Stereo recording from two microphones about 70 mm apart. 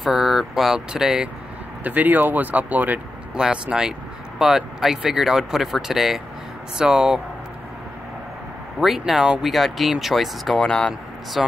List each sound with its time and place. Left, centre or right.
0.0 s speech: centre
1.9 s speech: right
3.3 s speech: centre
8.7 s speech: centre
10.6 s speech: centre
11.4 s speech: centre